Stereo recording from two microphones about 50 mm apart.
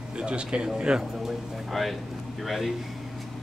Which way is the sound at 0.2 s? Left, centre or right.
Centre.